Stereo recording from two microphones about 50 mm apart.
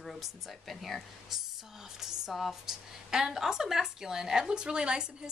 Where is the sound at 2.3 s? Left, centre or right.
Centre.